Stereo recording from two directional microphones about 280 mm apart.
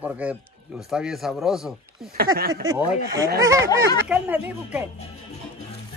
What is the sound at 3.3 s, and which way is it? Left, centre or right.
Speech, centre.